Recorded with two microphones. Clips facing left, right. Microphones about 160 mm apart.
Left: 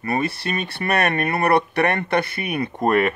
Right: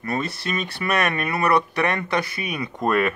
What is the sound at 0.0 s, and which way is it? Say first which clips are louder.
Speech: left 3 dB; 60° left (ahead or behind).